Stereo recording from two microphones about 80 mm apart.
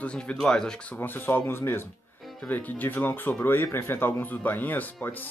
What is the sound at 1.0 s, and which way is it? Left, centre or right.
Speech, left.